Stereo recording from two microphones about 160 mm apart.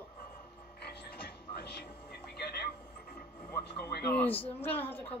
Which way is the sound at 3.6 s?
80° left.